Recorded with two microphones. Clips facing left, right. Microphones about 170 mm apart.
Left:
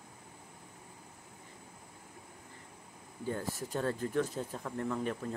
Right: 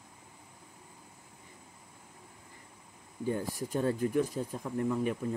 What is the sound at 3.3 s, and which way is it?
Speech, 15° right (ahead or behind).